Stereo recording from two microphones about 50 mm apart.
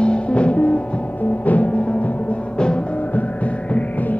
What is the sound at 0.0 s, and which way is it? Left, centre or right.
Music, left.